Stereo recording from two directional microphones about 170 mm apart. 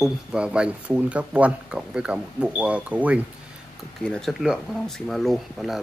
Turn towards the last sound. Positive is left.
turn(degrees=0)  # may be behind; listen again after turning